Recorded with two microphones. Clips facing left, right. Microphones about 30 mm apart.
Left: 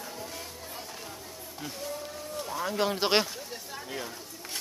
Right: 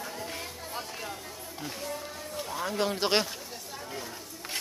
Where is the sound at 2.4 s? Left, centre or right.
Centre.